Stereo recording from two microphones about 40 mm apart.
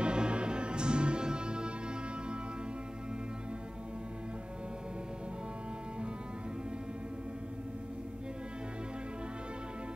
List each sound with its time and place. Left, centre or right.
0.0 s music: right